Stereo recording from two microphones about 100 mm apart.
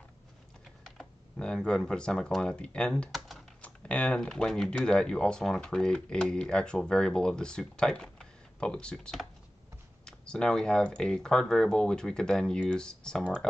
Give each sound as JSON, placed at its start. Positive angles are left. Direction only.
{"t": 0.8, "sound": "speech", "side_deg": 5}
{"t": 3.2, "sound": "typing", "side_deg": 0}
{"t": 3.6, "sound": "speech", "side_deg": 15}